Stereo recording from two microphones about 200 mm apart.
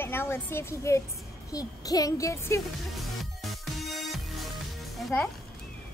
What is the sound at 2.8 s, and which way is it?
Music, centre (ahead or behind).